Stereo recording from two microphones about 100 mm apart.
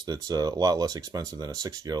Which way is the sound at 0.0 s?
40° right (ahead or behind).